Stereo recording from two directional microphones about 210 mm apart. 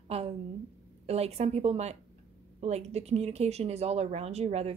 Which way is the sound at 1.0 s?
30° right (ahead or behind).